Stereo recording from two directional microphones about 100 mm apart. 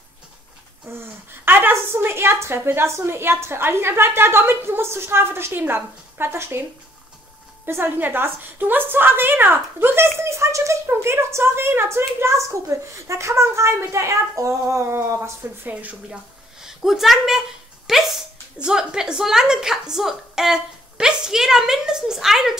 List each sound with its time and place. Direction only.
0.8 s a woman's voice: 25° right (ahead or behind)
7.6 s a woman's voice: 20° right (ahead or behind)
16.6 s a sound: 5° right (ahead or behind)
18.6 s speech: 10° right (ahead or behind)